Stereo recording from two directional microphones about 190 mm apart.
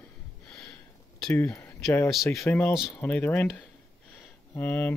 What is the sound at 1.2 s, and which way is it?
Speech, 10° left (ahead or behind).